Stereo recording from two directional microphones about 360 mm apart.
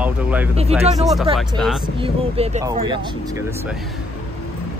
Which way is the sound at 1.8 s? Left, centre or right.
Centre.